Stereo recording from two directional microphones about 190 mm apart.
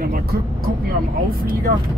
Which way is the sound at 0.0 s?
50° right (ahead or behind).